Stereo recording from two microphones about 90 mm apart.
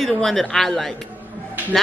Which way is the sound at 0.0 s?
Centre (ahead or behind).